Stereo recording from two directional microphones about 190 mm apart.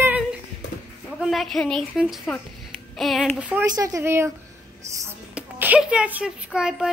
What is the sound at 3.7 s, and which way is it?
Humming, 20° right (ahead or behind).